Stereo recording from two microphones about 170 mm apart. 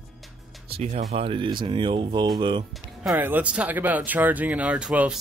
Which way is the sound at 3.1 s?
10° right (ahead or behind).